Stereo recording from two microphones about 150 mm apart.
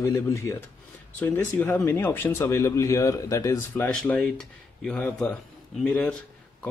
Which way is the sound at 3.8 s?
5° left (ahead or behind).